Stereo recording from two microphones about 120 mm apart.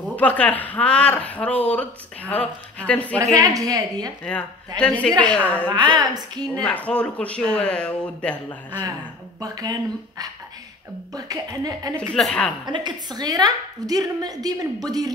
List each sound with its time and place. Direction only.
0.1 s speech: 10° left (ahead or behind)
3.3 s a woman's voice: 30° right (ahead or behind)
4.2 s speech: 10° left (ahead or behind)
5.9 s a woman's voice: 35° right (ahead or behind)
6.6 s speech: 10° left (ahead or behind)
9.4 s a woman's voice: 30° right (ahead or behind)
12.1 s a woman's voice: 5° left (ahead or behind)
12.6 s a woman's voice: 40° right (ahead or behind)